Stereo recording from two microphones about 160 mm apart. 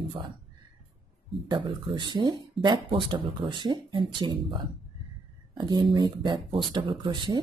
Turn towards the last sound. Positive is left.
turn(degrees=-30)  # may be behind; listen again after turning